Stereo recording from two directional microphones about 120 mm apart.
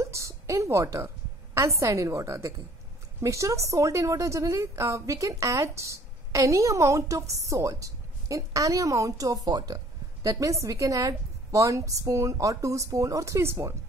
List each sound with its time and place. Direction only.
0.0 s a woman's voice: 25° right (ahead or behind)